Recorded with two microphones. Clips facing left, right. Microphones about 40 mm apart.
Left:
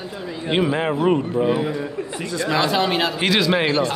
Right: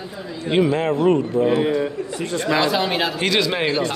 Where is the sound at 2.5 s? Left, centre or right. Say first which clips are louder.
Even; centre.